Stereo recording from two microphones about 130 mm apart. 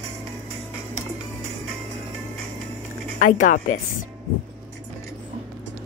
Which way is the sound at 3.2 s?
90° left.